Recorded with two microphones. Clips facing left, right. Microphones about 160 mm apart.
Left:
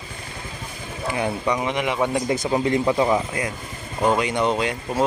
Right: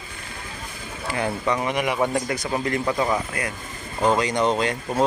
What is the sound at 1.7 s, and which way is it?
Speech, 10° right (ahead or behind).